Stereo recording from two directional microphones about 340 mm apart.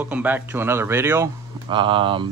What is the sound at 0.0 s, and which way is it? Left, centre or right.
Speech, centre.